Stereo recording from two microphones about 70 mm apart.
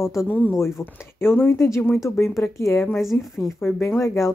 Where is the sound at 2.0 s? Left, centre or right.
Left.